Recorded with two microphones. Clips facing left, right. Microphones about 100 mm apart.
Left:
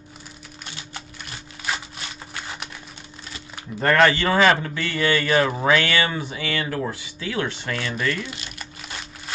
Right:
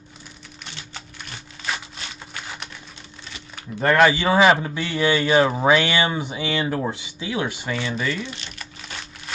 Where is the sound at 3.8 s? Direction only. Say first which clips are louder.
Right 1 dB; 10° right (ahead or behind).